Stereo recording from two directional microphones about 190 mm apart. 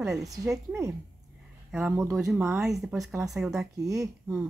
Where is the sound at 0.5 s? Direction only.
15° right (ahead or behind).